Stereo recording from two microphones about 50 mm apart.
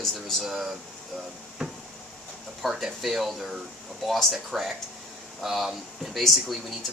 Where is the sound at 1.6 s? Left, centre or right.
Right.